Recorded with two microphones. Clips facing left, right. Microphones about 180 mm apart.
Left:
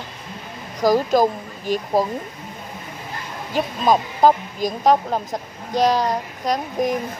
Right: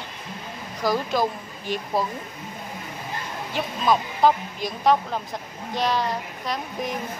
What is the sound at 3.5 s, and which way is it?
Speech, 40° left (ahead or behind).